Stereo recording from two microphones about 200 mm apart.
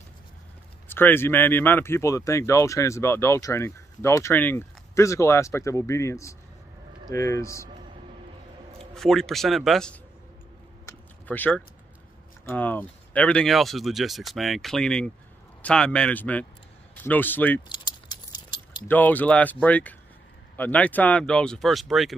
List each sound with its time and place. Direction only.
0.8 s speech: 10° left (ahead or behind)
8.9 s speech: centre (ahead or behind)
10.9 s a sound: 10° left (ahead or behind)
12.4 s speech: 10° left (ahead or behind)
17.6 s keys jangling: 20° left (ahead or behind)
18.9 s speech: 10° left (ahead or behind)